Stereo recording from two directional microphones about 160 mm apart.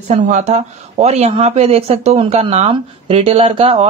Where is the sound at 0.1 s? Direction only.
45° right (ahead or behind).